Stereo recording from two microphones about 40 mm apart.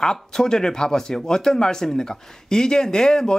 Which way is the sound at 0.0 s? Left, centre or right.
Centre.